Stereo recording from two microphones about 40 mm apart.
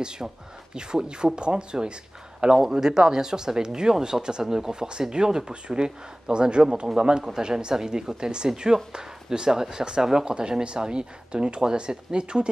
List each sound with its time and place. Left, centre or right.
0.0 s speech: centre